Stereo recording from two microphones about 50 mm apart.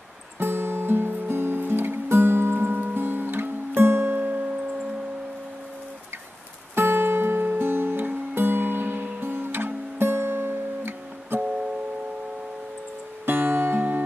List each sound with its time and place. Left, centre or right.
0.4 s music: right
4.2 s music: right
6.7 s music: right
13.2 s music: right